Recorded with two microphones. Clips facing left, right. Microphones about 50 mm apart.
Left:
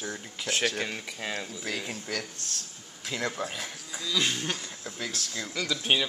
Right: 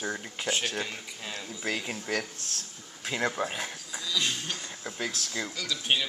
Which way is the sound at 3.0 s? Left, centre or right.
Centre.